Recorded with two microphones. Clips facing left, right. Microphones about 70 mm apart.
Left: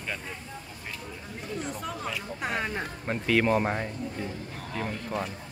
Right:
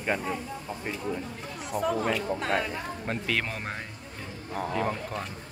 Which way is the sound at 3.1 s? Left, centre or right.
Centre.